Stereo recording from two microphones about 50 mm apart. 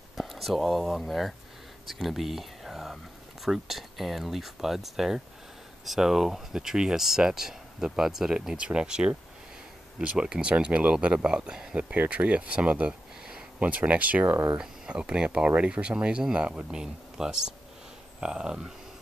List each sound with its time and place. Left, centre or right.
0.1 s speech: centre
11.7 s speech: right
14.3 s speech: right
14.6 s speech: centre